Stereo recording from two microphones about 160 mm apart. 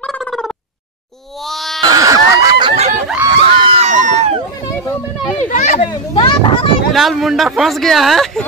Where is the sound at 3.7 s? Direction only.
45° right (ahead or behind).